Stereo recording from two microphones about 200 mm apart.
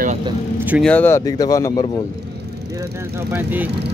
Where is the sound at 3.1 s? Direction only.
10° right (ahead or behind).